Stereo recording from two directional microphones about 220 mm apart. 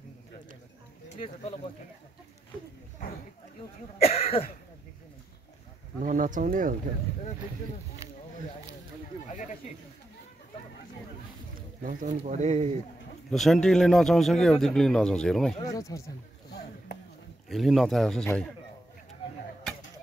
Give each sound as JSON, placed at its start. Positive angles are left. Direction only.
{"t": 1.1, "sound": "speech", "side_deg": 30}
{"t": 4.0, "sound": "speech", "side_deg": 25}
{"t": 6.0, "sound": "speech", "side_deg": -35}
{"t": 8.0, "sound": "a sound", "side_deg": -15}
{"t": 11.8, "sound": "speech", "side_deg": -40}
{"t": 13.3, "sound": "speech", "side_deg": 0}
{"t": 15.6, "sound": "speech", "side_deg": 15}
{"t": 17.5, "sound": "speech", "side_deg": 0}